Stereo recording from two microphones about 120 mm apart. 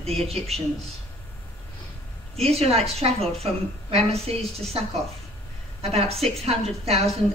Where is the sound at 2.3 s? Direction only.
55° right (ahead or behind).